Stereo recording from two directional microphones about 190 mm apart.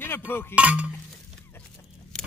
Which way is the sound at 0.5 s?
5° right (ahead or behind).